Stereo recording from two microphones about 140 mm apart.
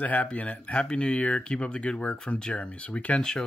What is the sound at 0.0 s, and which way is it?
Speech, 10° left (ahead or behind).